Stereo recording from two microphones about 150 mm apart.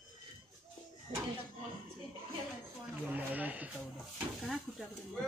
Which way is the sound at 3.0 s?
10° right (ahead or behind).